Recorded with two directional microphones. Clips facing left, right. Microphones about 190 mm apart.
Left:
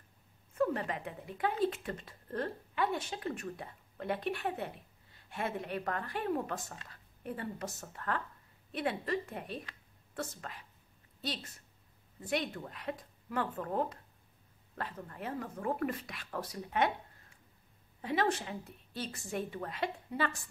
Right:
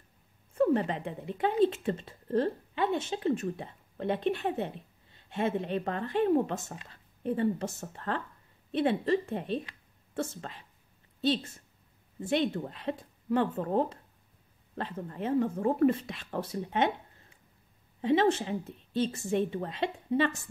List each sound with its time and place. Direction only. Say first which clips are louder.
0.6 s a woman's voice: right 6 dB; 25° right (ahead or behind)